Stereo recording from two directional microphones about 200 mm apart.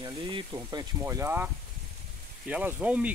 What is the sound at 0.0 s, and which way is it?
Speech, 20° right (ahead or behind).